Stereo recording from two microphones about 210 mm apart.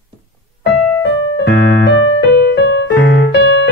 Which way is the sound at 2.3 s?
55° left (ahead or behind).